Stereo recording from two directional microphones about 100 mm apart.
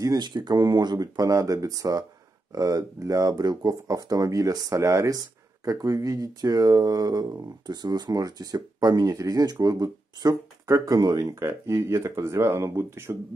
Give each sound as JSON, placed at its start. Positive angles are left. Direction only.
{"t": 0.0, "sound": "speech", "side_deg": -40}